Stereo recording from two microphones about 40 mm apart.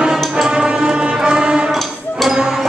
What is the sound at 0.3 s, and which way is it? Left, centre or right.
Music, centre.